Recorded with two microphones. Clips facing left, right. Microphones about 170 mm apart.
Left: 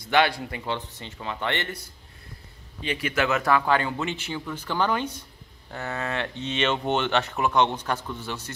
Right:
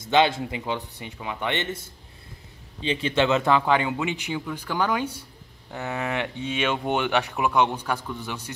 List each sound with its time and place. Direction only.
0.0 s speech: 20° right (ahead or behind)